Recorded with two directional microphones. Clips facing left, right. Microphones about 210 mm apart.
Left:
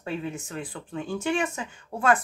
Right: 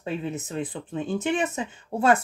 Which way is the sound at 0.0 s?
20° right (ahead or behind).